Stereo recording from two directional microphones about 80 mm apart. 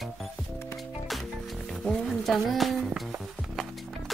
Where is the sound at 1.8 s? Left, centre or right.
Centre.